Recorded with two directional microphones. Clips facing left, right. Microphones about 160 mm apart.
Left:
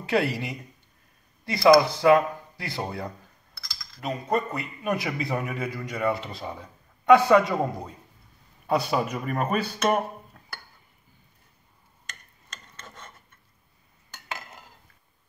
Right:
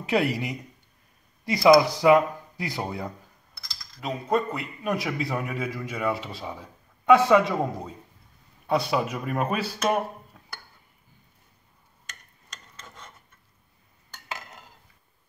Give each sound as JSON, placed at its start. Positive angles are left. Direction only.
{"t": 0.1, "sound": "speech", "side_deg": -15}
{"t": 4.0, "sound": "a man's voice", "side_deg": 0}